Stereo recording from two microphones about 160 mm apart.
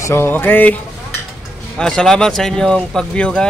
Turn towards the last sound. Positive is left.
turn(degrees=5)  # may be behind; listen again after turning